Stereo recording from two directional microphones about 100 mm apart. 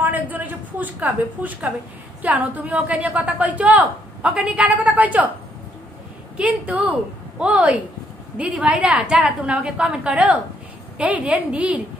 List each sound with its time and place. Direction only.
0.0 s a sound: 15° right (ahead or behind)
2.2 s a woman's voice: 15° right (ahead or behind)
6.3 s a woman's voice: 15° right (ahead or behind)